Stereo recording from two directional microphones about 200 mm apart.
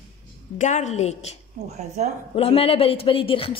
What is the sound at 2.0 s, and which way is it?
Speech, 35° right (ahead or behind).